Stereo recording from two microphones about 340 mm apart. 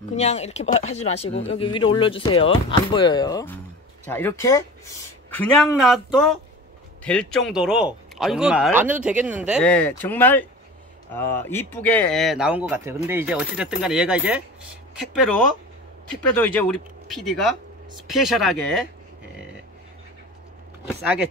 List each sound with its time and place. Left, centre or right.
0.1 s speech: centre
16.3 s speech: centre
20.8 s speech: centre